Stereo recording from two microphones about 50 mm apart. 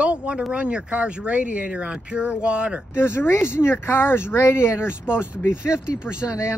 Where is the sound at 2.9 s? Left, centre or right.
Left.